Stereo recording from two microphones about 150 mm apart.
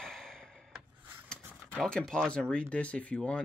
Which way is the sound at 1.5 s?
5° left (ahead or behind).